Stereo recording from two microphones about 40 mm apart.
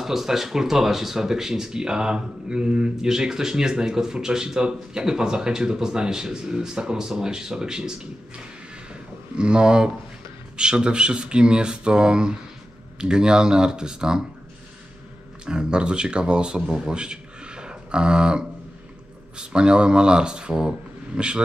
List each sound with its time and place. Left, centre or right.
0.0 s speech: centre
9.4 s speech: right
15.4 s speech: right